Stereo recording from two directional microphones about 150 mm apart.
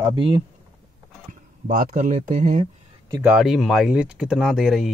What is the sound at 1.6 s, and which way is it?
Speech, 55° right (ahead or behind).